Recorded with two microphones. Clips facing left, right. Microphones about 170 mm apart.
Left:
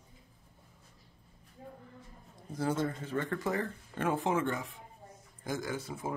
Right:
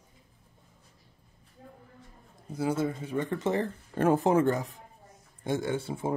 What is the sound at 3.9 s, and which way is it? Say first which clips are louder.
Speech: right 8 dB; 40° right (ahead or behind).